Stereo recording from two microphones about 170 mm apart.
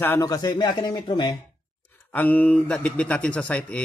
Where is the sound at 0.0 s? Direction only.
15° left (ahead or behind).